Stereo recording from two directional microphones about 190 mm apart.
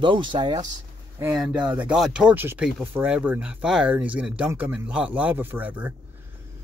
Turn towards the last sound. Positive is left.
turn(degrees=-10)  # may be behind; listen again after turning